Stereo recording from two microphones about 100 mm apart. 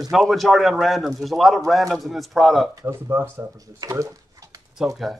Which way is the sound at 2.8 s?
30° right (ahead or behind).